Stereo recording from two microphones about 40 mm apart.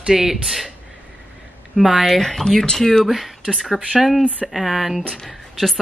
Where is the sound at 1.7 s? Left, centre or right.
Centre.